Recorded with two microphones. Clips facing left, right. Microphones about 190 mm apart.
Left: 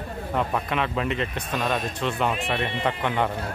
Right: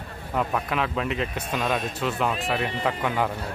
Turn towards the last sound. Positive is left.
turn(degrees=-5)  # may be behind; listen again after turning